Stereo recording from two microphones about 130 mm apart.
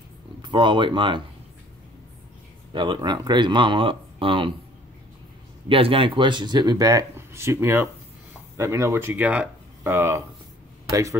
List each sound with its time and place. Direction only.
0.4 s speech: 35° right (ahead or behind)
2.7 s speech: 40° right (ahead or behind)
5.7 s speech: 45° right (ahead or behind); by 9.9 s 10° right (ahead or behind)
9.9 s speech: 20° right (ahead or behind)